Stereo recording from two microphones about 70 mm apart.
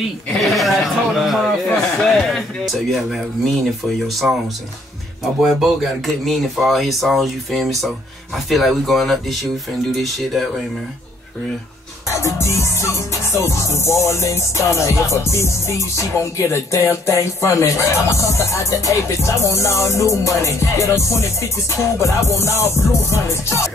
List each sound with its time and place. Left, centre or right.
0.4 s a man's voice: centre
2.0 s a sound: centre
4.2 s speech: centre
5.6 s speech: centre
12.2 s music: left